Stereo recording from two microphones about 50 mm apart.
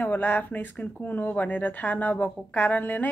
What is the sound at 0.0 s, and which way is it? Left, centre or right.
Speech, left.